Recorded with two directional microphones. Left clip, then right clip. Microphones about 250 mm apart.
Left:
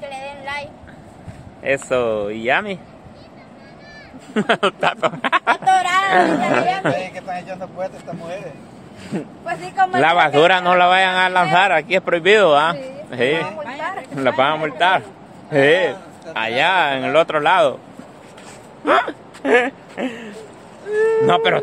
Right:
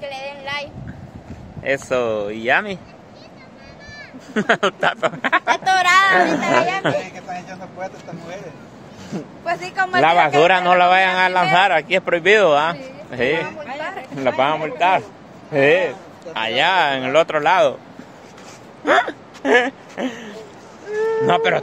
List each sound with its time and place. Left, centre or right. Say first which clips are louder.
0.0 s a sound: right 1 dB; centre
1.6 s speech: left 1 dB; centre
4.3 s a man's voice: even; centre
5.6 s speech: right 1 dB; right
6.1 s a man's voice: even; centre
7.2 s speech: left 3 dB; left
9.4 s speech: left 2 dB; right
9.9 s a man's voice: right 1 dB; centre
16.3 s a man's voice: even; centre
18.9 s speech: even; centre
20.9 s a sound: left 4 dB; left
21.3 s a man's voice: left 1 dB; centre